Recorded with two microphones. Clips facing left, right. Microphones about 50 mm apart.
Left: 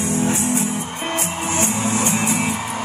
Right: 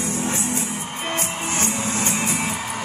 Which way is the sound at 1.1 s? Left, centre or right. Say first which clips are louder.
Left 2 dB; centre.